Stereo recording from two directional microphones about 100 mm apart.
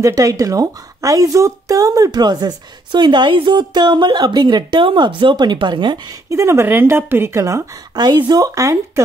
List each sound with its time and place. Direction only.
0.0 s speech: 35° right (ahead or behind); by 5.9 s 50° right (ahead or behind)
6.3 s speech: 30° right (ahead or behind)
7.9 s speech: 45° right (ahead or behind)